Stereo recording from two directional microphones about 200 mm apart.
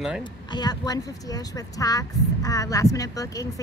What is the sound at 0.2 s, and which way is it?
Speech, 20° left (ahead or behind).